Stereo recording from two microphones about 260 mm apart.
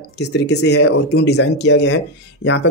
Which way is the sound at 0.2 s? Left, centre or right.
Left.